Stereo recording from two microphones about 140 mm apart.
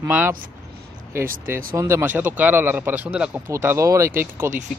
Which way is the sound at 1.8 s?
20° right (ahead or behind).